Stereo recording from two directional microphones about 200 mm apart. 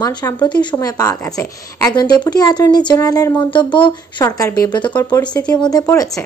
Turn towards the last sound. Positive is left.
turn(degrees=10)  # may be behind; listen again after turning